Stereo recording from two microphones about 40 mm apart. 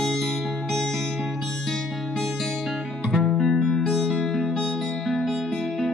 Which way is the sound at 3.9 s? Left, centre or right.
Centre.